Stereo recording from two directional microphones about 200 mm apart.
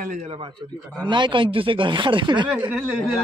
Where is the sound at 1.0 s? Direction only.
25° right (ahead or behind).